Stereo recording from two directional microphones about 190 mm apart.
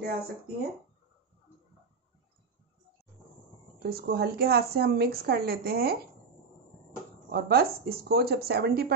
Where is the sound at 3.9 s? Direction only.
55° right (ahead or behind).